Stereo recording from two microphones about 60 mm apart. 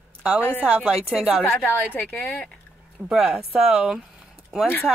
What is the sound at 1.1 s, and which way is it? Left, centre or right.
Speech, centre.